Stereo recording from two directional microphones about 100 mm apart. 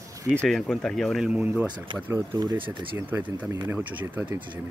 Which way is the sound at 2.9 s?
20° right (ahead or behind).